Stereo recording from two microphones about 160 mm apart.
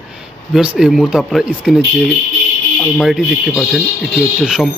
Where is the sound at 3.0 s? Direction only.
Centre (ahead or behind).